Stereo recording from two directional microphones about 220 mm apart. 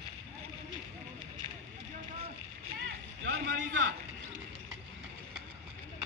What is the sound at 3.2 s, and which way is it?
Vehicle, 45° right (ahead or behind).